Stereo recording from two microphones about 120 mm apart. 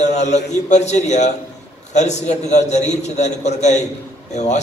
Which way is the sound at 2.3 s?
75° left (ahead or behind).